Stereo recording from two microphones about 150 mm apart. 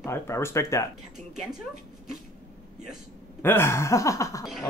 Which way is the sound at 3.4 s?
15° left (ahead or behind).